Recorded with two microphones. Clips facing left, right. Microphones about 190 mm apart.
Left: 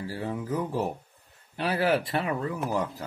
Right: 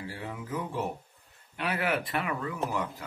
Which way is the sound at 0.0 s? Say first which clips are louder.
Left 6 dB; 35° left (ahead or behind).